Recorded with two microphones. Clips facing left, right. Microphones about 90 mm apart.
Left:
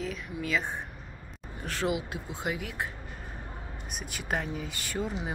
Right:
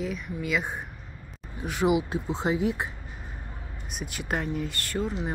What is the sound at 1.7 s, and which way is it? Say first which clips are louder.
Speech: right 6 dB; 15° right (ahead or behind).